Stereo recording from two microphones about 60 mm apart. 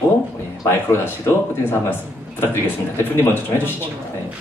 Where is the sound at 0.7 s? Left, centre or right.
Left.